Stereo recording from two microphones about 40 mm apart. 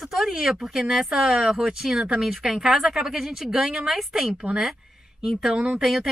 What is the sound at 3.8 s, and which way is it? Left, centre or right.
Speech, centre.